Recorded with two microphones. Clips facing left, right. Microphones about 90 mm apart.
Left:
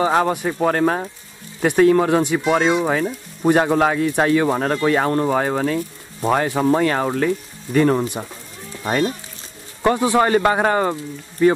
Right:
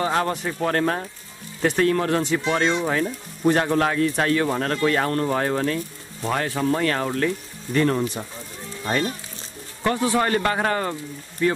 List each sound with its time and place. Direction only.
0.0 s speech: 15° left (ahead or behind)